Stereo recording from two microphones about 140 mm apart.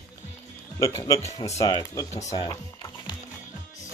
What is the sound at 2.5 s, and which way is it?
Music, 25° left (ahead or behind).